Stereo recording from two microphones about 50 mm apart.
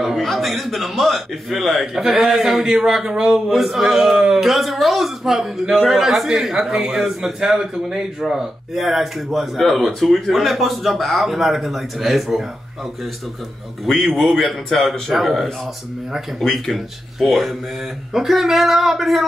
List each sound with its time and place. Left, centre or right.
0.0 s a sound: centre
0.3 s a man's voice: centre
3.3 s speech: centre
13.8 s speech: centre
16.5 s speech: centre